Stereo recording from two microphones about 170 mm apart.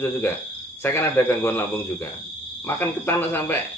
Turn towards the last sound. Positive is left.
turn(degrees=10)  # may be behind; listen again after turning